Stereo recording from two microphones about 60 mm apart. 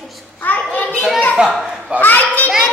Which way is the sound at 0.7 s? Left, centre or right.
Left.